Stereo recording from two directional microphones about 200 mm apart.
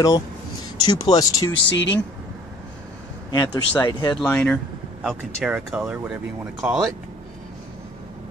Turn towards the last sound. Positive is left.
turn(degrees=0)  # may be behind; listen again after turning